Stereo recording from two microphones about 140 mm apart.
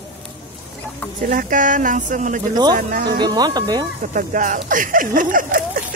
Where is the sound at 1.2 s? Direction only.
80° right.